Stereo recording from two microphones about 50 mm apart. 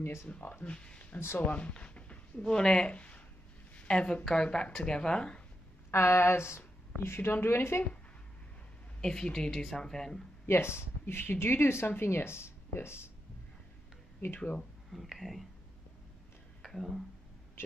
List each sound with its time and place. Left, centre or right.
0.0 s speech: left
0.3 s speech: left
0.7 s speech: left
5.9 s speech: left
7.0 s speech: left
9.0 s speech: centre
10.4 s speech: left
14.4 s speech: left
14.9 s speech: centre
16.6 s speech: centre
17.6 s a sound: left